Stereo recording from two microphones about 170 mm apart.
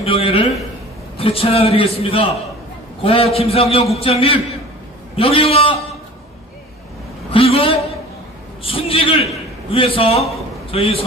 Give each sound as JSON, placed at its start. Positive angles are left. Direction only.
{"t": 0.0, "sound": "a man's voice", "side_deg": 35}
{"t": 7.3, "sound": "a man's voice", "side_deg": 35}